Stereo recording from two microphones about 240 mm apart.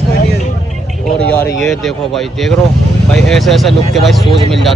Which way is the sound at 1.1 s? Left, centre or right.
Centre.